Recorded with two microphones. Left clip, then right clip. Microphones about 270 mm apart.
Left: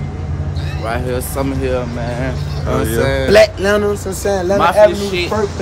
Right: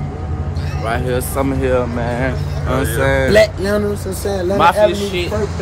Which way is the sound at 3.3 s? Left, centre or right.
Left.